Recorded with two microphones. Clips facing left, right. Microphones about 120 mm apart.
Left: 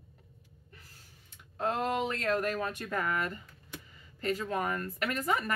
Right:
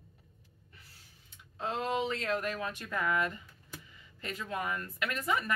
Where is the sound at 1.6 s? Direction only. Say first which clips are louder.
Left 2 dB; 50° left (ahead or behind).